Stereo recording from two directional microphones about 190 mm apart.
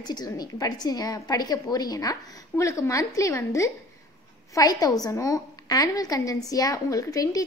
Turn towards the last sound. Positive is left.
turn(degrees=20)  # may be behind; listen again after turning